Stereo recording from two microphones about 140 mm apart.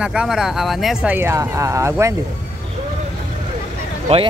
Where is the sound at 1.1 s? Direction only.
20° right (ahead or behind).